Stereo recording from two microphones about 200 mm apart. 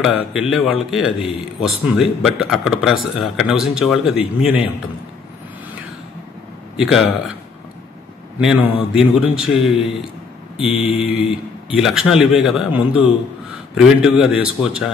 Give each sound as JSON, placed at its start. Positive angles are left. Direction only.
{"t": 0.0, "sound": "speech", "side_deg": -5}
{"t": 6.8, "sound": "speech", "side_deg": 0}
{"t": 8.4, "sound": "speech", "side_deg": -5}
{"t": 10.6, "sound": "mantra", "side_deg": 30}
{"t": 11.7, "sound": "speech", "side_deg": -5}